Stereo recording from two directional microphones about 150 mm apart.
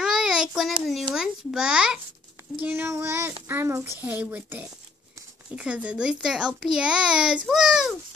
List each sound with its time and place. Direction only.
0.0 s a child's voice: 5° right (ahead or behind)